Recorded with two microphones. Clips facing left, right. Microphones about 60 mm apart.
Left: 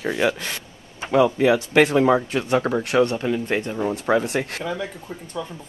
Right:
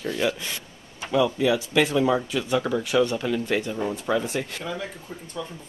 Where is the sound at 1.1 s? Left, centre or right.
Left.